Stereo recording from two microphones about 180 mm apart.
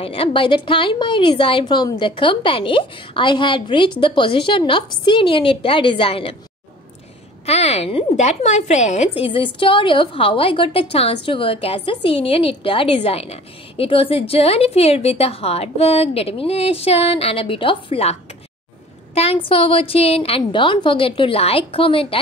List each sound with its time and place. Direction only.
0.0 s a woman's voice: 30° left (ahead or behind)
7.4 s a woman's voice: 35° left (ahead or behind)
19.1 s a woman's voice: 30° left (ahead or behind)